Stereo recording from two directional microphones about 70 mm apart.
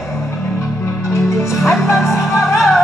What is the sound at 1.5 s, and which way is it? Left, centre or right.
Music, centre.